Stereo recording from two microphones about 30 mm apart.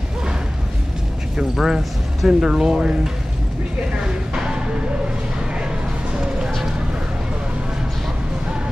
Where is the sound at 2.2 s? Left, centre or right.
Right.